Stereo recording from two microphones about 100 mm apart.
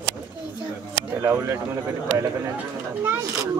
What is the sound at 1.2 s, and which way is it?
Speech, 25° right (ahead or behind).